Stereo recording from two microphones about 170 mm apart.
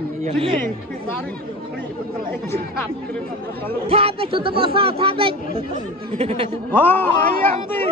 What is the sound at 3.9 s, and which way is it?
A man's voice, 35° right (ahead or behind).